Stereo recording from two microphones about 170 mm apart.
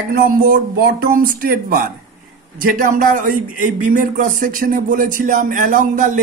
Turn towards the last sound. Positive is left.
turn(degrees=-50)  # may be behind; listen again after turning